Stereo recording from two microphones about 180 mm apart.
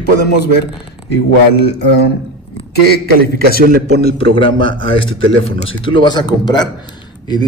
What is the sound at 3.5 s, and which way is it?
Speech, 55° right (ahead or behind).